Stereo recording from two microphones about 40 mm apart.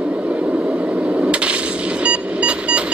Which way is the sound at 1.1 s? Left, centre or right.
Right.